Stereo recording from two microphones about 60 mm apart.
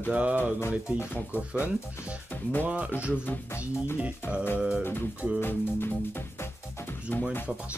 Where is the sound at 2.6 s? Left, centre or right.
Right.